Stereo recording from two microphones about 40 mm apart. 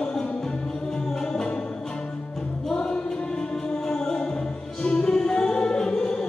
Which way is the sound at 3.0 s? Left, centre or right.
Centre.